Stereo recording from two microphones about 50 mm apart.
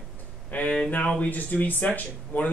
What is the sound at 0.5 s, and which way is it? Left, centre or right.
Speech, left.